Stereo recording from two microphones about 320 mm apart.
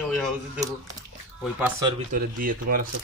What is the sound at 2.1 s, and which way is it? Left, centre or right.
Speech, right.